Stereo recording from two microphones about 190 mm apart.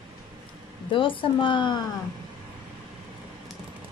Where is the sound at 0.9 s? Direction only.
25° left (ahead or behind).